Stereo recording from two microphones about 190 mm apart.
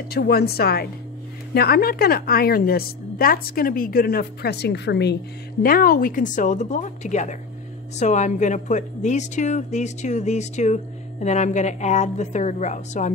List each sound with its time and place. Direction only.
0.1 s a woman's voice: 55° left (ahead or behind)
5.6 s a woman's voice: 50° left (ahead or behind)